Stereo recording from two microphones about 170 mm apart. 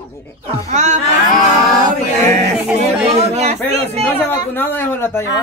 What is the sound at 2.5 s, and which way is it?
Speech, 5° right (ahead or behind).